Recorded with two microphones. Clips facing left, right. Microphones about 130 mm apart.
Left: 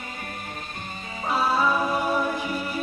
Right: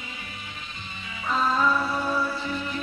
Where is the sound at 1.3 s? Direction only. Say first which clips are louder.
Left 1 dB; 10° left (ahead or behind).